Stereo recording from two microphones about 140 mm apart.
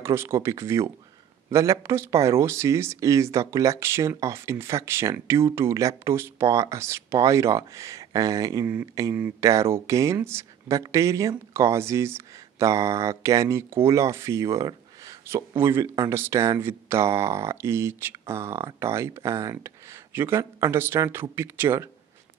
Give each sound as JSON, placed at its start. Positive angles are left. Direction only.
{"t": 0.0, "sound": "speech", "side_deg": -20}